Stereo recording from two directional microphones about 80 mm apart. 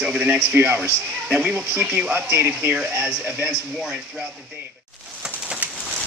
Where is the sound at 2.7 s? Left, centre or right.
Centre.